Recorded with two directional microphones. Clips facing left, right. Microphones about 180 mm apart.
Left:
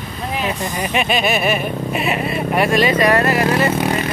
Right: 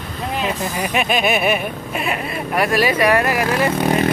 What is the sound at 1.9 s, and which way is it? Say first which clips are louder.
Speech: left 3 dB; 5° left (ahead or behind).